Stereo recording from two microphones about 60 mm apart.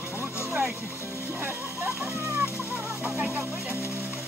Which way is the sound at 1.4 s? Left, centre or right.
Right.